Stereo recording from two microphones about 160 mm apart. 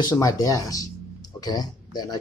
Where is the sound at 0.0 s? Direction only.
20° left (ahead or behind).